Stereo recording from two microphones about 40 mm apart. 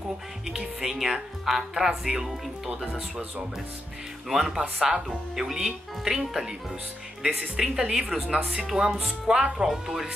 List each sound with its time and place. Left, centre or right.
0.7 s speech: centre
4.5 s speech: centre